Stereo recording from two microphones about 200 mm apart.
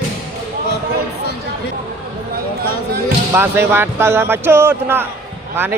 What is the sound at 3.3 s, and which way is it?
Speech, 10° right (ahead or behind).